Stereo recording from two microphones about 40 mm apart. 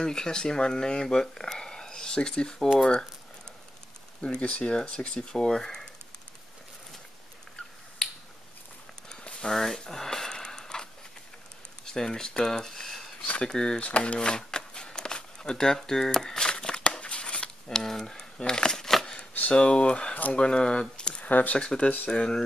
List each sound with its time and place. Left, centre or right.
0.0 s speech: centre
4.2 s speech: left
9.1 s a sound: centre
11.8 s speech: centre
13.7 s a sound: left; by 16.4 s centre
16.4 s a sound: left
17.6 s speech: centre
18.4 s a sound: centre
19.5 s speech: left
21.3 s speech: left
21.5 s speech: centre
21.8 s speech: left
22.1 s speech: left